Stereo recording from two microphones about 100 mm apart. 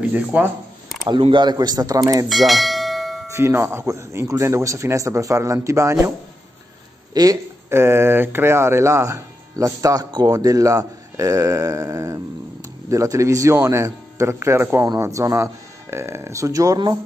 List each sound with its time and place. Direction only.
0.1 s speech: 15° right (ahead or behind)
1.3 s speech: 50° right (ahead or behind)
2.2 s bell: centre (ahead or behind)
3.3 s speech: 30° right (ahead or behind)
7.2 s speech: 45° right (ahead or behind)
7.7 s speech: 25° right (ahead or behind)